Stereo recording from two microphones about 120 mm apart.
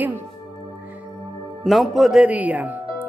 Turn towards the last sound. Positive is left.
turn(degrees=-15)  # may be behind; listen again after turning